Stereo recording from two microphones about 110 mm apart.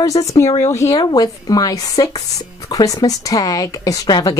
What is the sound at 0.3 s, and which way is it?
A woman's voice, 30° left (ahead or behind).